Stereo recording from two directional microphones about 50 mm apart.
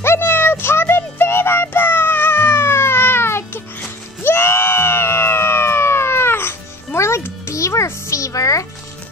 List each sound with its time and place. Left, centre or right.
0.2 s music: left
4.2 s screaming: left
7.0 s music: left
7.4 s music: left